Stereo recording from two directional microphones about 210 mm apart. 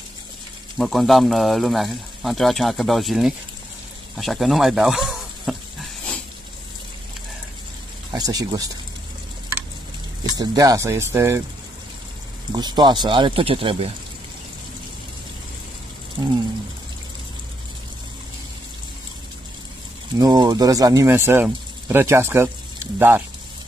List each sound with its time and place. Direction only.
0.7 s speech: centre (ahead or behind)
4.2 s snake: centre (ahead or behind)
8.1 s speech: 20° right (ahead or behind)
10.2 s speech: 20° right (ahead or behind)
12.5 s speech: 20° right (ahead or behind)
16.2 s speech: 20° right (ahead or behind)
20.2 s speech: 15° right (ahead or behind)